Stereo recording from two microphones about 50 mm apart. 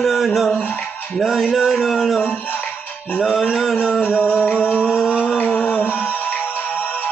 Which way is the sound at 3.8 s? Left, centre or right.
Centre.